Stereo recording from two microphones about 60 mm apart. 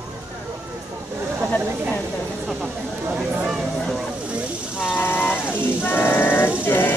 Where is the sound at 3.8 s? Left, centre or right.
Centre.